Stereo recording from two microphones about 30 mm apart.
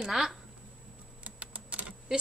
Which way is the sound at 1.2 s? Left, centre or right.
Right.